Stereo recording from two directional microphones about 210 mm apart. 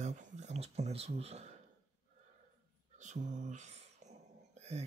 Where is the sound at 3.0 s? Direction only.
35° right (ahead or behind).